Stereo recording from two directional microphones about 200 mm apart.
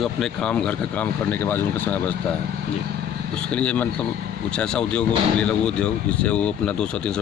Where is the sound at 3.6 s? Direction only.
5° left (ahead or behind).